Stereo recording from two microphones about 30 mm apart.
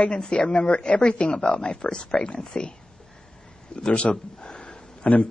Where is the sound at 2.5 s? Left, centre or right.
Centre.